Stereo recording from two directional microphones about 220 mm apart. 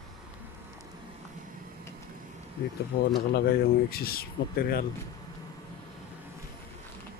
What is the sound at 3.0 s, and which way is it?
Speech, 45° left (ahead or behind).